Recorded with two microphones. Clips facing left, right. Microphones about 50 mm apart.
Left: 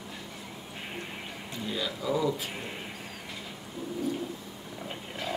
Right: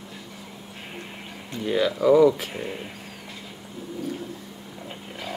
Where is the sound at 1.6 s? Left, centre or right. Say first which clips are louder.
Right 12 dB; right.